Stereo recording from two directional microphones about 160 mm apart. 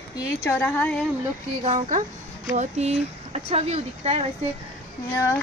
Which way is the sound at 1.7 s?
50° right (ahead or behind).